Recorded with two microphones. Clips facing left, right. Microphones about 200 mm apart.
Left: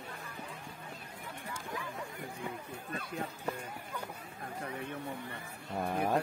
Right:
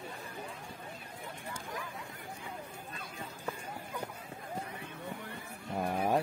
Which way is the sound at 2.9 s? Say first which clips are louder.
Left 9 dB; 65° left (ahead or behind).